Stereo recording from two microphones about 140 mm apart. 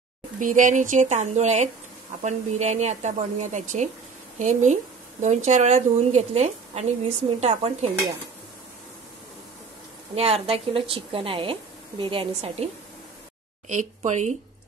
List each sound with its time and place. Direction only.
0.4 s a woman's voice: 65° right (ahead or behind); by 7.9 s 50° right (ahead or behind)
10.1 s a woman's voice: 45° right (ahead or behind)
13.7 s a woman's voice: 60° right (ahead or behind)